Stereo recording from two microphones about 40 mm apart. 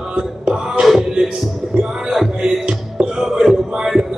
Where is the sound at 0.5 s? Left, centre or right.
Centre.